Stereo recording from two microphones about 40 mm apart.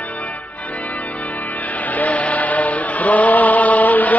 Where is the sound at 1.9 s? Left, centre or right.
Left.